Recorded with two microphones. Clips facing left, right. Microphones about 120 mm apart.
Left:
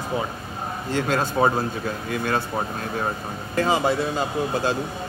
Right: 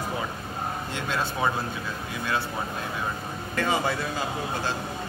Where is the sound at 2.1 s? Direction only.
55° left (ahead or behind).